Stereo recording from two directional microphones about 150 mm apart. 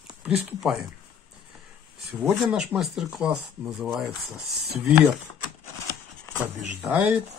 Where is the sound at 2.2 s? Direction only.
Centre (ahead or behind).